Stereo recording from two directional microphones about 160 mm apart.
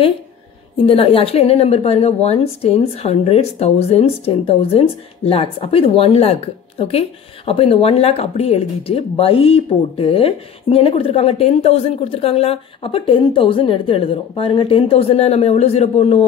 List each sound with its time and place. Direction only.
0.8 s a woman's voice: 35° left (ahead or behind)